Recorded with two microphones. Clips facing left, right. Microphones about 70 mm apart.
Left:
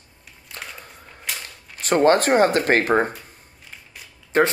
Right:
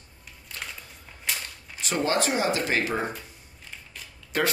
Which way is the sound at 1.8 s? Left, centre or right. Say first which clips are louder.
Left 9 dB; left.